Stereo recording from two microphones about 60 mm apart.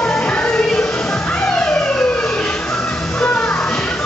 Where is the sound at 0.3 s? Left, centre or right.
Centre.